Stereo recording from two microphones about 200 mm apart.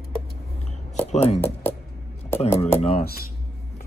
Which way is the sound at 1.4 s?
10° left (ahead or behind).